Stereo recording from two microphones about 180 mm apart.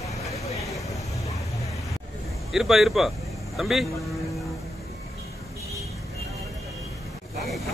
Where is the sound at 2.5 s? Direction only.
Centre (ahead or behind).